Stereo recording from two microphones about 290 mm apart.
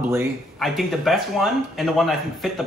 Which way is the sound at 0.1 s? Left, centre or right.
Centre.